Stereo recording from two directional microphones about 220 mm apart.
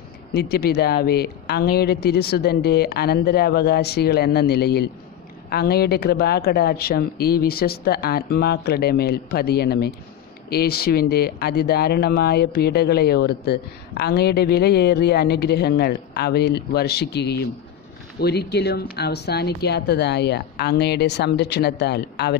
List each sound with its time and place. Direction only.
0.3 s speech: 45° left (ahead or behind)